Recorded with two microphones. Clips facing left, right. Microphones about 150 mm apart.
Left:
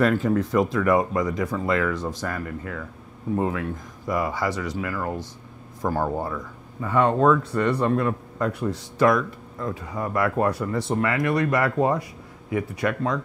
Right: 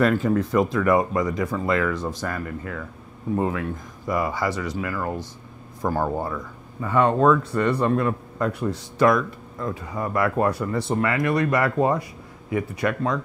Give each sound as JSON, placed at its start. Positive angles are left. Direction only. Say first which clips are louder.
{"t": 0.0, "sound": "speech", "louder": "right 1 dB", "side_deg": -20}